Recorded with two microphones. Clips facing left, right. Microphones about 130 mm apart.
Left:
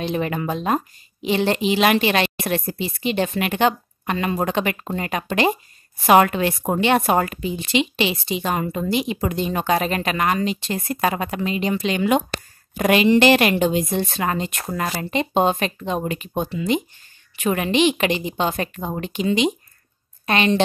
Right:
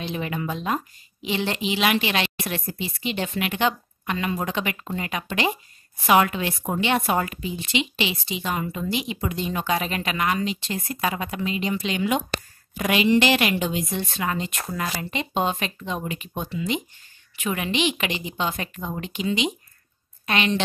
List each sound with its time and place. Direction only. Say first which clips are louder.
0.0 s a woman's voice: left 5 dB; 50° left (ahead or behind)